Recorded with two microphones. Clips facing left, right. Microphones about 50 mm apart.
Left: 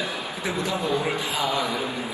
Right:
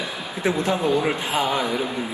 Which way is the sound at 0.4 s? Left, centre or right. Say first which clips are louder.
Right 6 dB; right.